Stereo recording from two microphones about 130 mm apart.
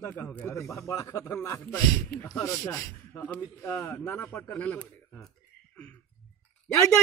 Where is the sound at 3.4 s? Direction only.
20° left (ahead or behind).